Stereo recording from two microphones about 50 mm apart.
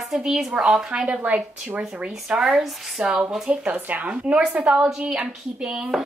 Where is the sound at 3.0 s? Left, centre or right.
Right.